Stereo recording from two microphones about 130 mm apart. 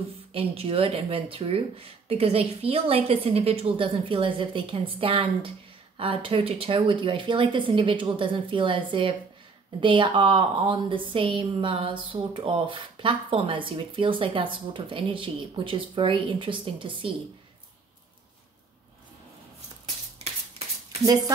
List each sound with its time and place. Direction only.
0.3 s a woman's voice: 45° right (ahead or behind)
21.0 s speech: 25° right (ahead or behind)